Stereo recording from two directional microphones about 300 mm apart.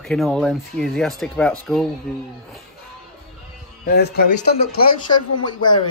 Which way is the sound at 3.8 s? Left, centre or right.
Left.